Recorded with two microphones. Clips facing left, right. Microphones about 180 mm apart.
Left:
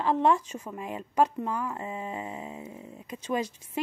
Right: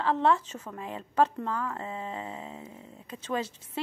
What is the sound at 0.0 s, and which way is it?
Speech, 15° left (ahead or behind).